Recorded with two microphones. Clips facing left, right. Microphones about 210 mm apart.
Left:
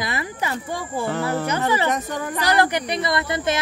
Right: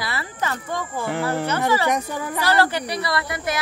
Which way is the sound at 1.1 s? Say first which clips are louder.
Right 1 dB; 15° right (ahead or behind).